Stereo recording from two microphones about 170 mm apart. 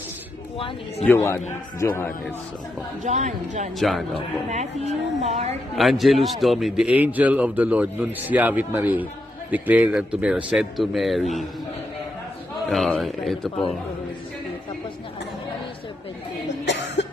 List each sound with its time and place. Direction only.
1.0 s a man's voice: 15° left (ahead or behind)
3.0 s speech: 45° right (ahead or behind)
3.8 s a man's voice: centre (ahead or behind)
4.5 s a woman's voice: 40° right (ahead or behind)
5.8 s a man's voice: centre (ahead or behind)
12.6 s a man's voice: centre (ahead or behind)
16.4 s cough: 90° left